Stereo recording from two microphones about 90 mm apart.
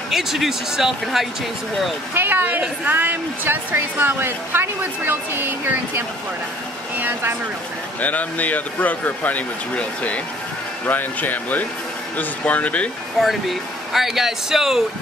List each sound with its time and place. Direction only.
0.1 s speech: 5° right (ahead or behind)
2.1 s a woman's voice: 20° right (ahead or behind)
7.0 s a woman's voice: 20° right (ahead or behind)
8.0 s speech: 15° left (ahead or behind)
13.2 s speech: centre (ahead or behind)